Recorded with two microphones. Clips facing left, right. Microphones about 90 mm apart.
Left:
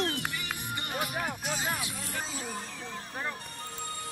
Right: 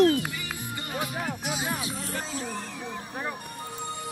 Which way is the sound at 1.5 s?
15° right (ahead or behind).